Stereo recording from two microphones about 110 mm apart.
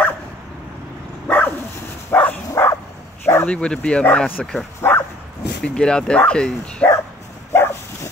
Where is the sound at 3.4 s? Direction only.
10° left (ahead or behind).